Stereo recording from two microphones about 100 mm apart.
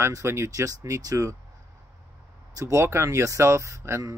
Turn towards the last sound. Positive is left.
turn(degrees=-30)  # may be behind; listen again after turning